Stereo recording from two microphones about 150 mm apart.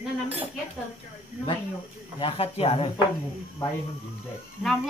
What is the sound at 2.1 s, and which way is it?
Speech, 40° left (ahead or behind).